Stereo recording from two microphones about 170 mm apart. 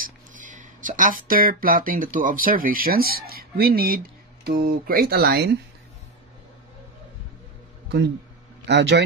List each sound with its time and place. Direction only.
0.0 s speech: 50° right (ahead or behind); by 5.6 s 70° right (ahead or behind)
8.6 s speech: 90° right